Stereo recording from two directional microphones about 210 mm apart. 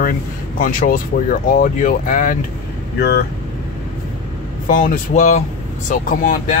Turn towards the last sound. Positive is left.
turn(degrees=40)  # may be behind; listen again after turning